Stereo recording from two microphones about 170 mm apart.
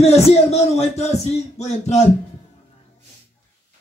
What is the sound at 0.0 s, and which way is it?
Speech, 40° left (ahead or behind).